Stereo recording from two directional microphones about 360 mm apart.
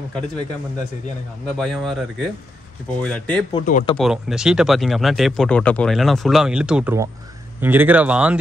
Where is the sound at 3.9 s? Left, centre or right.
Centre.